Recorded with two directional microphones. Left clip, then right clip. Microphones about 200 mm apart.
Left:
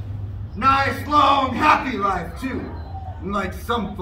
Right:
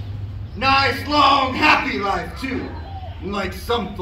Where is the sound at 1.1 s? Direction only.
30° right (ahead or behind).